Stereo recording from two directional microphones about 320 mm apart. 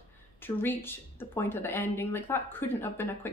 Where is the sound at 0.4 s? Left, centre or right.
Centre.